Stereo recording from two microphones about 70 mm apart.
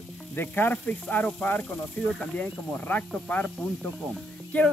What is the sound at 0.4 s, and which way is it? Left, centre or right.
Speech, left.